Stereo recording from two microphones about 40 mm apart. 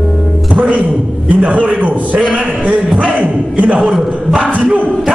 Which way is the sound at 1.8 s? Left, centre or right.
Right.